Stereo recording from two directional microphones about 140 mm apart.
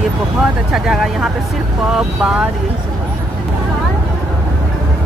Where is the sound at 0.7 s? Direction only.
5° right (ahead or behind).